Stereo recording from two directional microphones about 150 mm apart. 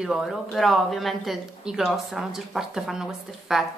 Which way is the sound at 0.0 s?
Centre (ahead or behind).